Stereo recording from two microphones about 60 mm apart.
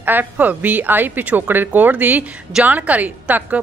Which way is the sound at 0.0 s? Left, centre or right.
Right.